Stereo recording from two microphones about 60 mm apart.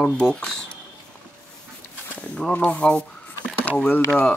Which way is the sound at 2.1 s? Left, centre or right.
Left.